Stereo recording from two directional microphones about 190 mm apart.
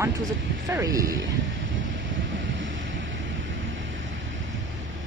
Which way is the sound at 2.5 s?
75° right (ahead or behind).